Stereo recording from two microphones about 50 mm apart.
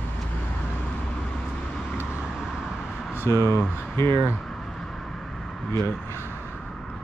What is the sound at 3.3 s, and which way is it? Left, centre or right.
Speech, left.